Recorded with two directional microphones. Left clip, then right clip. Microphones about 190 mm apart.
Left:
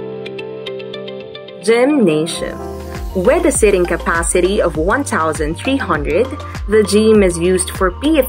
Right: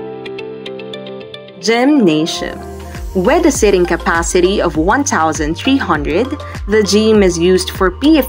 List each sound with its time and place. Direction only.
1.7 s speech: 30° right (ahead or behind)